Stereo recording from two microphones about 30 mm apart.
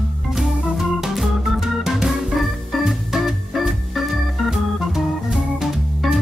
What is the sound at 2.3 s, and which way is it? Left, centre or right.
Organ, centre.